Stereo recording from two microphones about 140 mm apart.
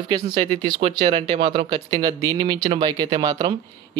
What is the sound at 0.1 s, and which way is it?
Speech, 30° right (ahead or behind).